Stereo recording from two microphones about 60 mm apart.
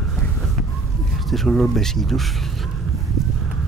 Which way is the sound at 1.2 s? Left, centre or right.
Centre.